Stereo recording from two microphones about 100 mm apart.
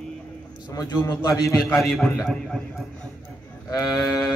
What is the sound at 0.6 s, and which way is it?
Speech, 40° left (ahead or behind).